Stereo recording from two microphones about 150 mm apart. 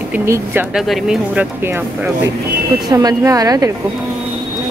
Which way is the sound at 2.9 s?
25° right (ahead or behind).